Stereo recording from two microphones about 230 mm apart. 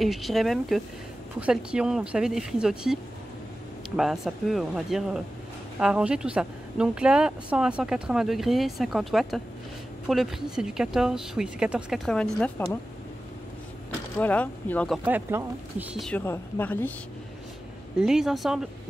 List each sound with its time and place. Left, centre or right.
0.0 s speech: centre
14.1 s speech: centre
15.0 s speech: centre
18.0 s speech: centre